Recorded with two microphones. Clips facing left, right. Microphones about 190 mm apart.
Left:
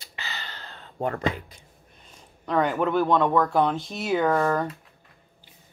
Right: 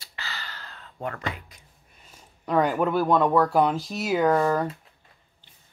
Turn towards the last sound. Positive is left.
turn(degrees=-10)  # may be behind; listen again after turning